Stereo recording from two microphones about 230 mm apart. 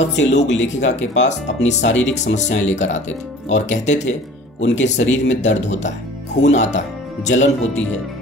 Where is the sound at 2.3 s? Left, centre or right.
Left.